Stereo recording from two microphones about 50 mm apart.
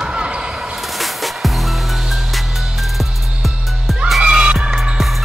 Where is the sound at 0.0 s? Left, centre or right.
Centre.